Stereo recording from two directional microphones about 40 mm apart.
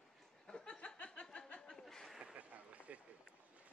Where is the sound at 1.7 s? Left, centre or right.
Centre.